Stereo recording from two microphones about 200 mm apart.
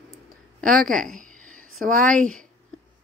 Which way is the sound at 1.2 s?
40° right (ahead or behind).